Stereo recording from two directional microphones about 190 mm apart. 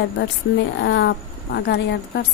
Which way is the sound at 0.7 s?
65° left (ahead or behind).